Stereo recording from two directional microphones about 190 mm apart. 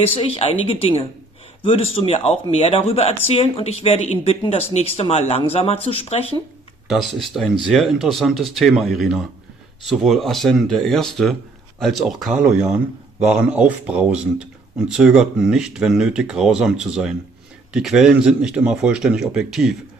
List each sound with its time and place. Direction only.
0.2 s speech: 30° left (ahead or behind)
6.9 s speech: centre (ahead or behind)